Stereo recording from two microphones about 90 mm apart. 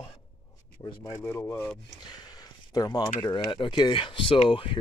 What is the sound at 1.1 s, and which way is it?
Speech, 30° left (ahead or behind).